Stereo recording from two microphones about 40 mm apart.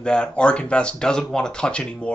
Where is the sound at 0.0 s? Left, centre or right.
Left.